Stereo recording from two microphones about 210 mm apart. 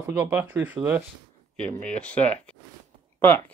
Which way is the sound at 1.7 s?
5° left (ahead or behind).